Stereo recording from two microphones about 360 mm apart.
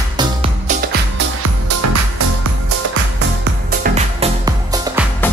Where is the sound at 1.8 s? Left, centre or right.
Right.